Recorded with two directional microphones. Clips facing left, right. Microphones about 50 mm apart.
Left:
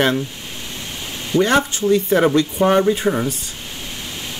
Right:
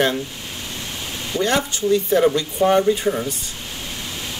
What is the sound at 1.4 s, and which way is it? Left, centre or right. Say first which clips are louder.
Speech: left 4 dB; left.